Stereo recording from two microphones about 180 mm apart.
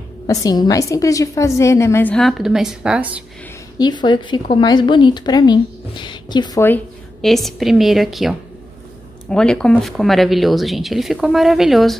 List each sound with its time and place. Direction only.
0.3 s a woman's voice: 20° left (ahead or behind); by 3.3 s 5° right (ahead or behind)
3.7 s speech: 25° left (ahead or behind)
6.6 s speech: 5° left (ahead or behind)